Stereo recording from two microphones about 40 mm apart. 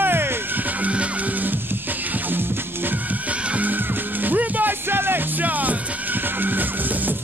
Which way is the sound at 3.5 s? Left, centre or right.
Right.